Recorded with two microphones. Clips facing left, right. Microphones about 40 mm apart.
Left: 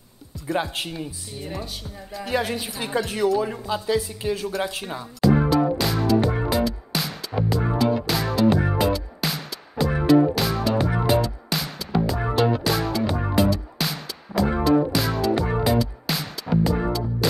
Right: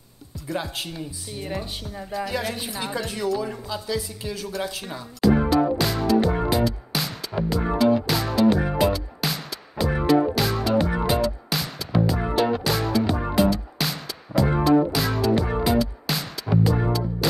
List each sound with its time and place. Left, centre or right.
0.5 s speech: left
0.8 s speech: centre
1.3 s speech: centre
2.2 s speech: left
2.5 s speech: centre
3.1 s speech: centre
5.2 s music: centre